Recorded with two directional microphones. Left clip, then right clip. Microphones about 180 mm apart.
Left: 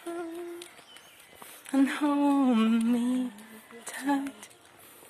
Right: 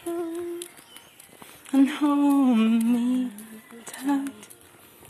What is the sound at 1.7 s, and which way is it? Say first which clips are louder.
Humming: right 4 dB; 15° left (ahead or behind).